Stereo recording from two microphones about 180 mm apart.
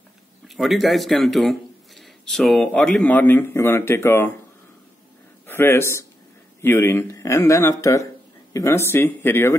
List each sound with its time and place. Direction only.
0.5 s speech: centre (ahead or behind)
5.5 s speech: 10° left (ahead or behind)